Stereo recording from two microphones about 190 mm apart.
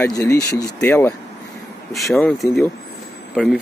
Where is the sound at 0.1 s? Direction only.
15° left (ahead or behind).